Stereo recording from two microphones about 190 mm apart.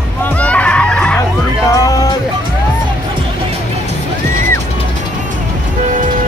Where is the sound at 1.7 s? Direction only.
20° left (ahead or behind).